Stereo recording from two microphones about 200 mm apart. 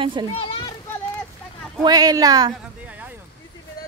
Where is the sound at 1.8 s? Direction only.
20° right (ahead or behind).